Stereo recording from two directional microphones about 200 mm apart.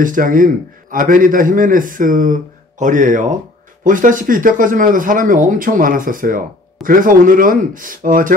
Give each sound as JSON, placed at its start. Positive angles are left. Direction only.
{"t": 0.0, "sound": "speech", "side_deg": -45}